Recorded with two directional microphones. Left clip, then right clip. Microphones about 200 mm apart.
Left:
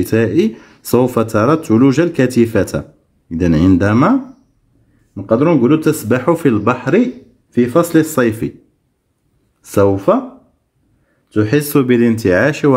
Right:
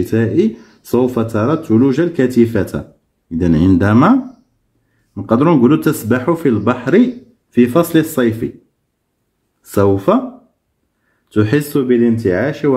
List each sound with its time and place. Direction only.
0.0 s a man's voice: 20° left (ahead or behind); by 5.9 s 5° left (ahead or behind)
6.0 s a man's voice: 20° left (ahead or behind)
9.6 s a man's voice: 15° left (ahead or behind)
11.2 s a man's voice: 5° left (ahead or behind)
11.7 s speech: 40° left (ahead or behind)